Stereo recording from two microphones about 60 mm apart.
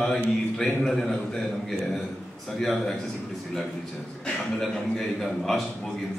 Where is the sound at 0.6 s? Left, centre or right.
Centre.